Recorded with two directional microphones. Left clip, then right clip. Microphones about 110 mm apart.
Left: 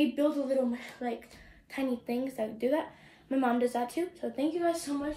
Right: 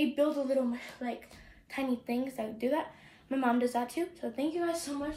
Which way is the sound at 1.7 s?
40° left (ahead or behind).